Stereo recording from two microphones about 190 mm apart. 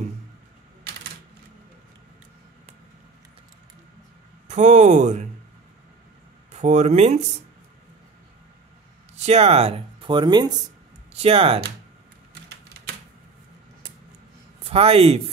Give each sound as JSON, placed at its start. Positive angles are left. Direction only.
{"t": 4.5, "sound": "speech", "side_deg": -40}
{"t": 6.5, "sound": "speech", "side_deg": -35}
{"t": 9.1, "sound": "speech", "side_deg": -35}
{"t": 14.6, "sound": "speech", "side_deg": -30}